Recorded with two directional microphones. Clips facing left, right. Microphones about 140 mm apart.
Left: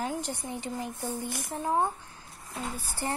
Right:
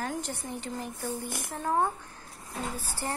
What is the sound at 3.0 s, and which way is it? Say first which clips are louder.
Speech: left 2 dB; 20° left (ahead or behind).